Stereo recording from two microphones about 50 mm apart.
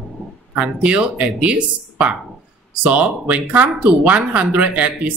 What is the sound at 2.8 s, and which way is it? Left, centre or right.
Speech, right.